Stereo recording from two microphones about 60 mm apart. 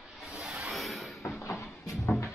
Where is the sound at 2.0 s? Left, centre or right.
Left.